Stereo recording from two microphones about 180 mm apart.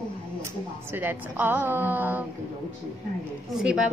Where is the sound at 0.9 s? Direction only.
10° right (ahead or behind).